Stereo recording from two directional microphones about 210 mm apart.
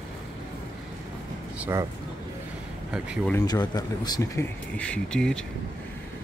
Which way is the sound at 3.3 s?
15° left (ahead or behind).